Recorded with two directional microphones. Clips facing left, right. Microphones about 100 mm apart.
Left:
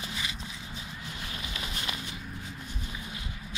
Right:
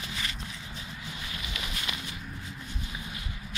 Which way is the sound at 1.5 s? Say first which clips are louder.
Even; 30° left (ahead or behind).